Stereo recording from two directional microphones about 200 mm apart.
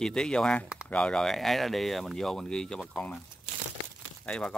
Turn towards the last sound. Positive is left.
turn(degrees=5)  # may be behind; listen again after turning